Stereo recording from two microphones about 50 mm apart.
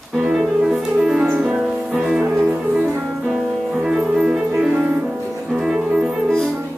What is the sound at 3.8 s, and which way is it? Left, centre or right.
Music, centre.